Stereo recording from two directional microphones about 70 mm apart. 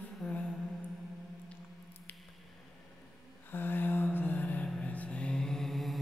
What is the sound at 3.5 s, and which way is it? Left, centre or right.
Mantra, left.